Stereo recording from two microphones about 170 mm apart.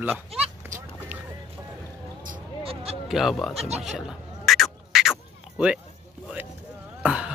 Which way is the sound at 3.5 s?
40° right (ahead or behind).